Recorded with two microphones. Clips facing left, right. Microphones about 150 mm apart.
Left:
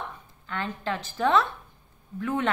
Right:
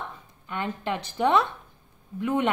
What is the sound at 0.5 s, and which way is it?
A woman's voice, 20° right (ahead or behind).